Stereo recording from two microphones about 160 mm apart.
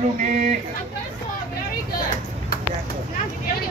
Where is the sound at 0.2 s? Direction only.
50° right (ahead or behind).